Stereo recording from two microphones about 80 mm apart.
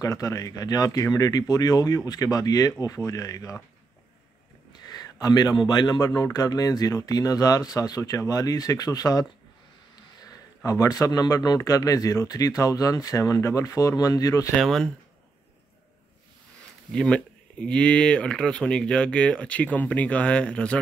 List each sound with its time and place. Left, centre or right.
0.0 s a man's voice: left
4.8 s speech: left
6.3 s a man's voice: left
10.2 s a man's voice: left
14.5 s speech: centre
16.9 s speech: centre